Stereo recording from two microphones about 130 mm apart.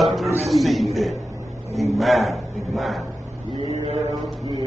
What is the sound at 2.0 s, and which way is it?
A man's voice, centre (ahead or behind).